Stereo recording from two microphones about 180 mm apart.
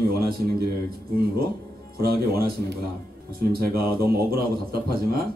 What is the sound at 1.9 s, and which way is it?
A man's voice, 55° right (ahead or behind).